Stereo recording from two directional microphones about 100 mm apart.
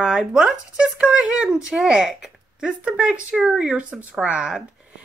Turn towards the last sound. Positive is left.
turn(degrees=-10)  # may be behind; listen again after turning